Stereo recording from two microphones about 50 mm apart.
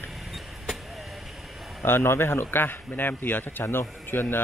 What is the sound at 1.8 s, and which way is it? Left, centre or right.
A man's voice, left.